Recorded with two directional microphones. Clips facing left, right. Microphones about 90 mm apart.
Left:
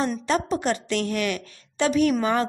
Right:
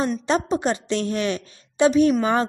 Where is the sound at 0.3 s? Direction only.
20° right (ahead or behind).